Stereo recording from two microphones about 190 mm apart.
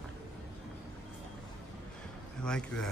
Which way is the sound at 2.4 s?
5° left (ahead or behind).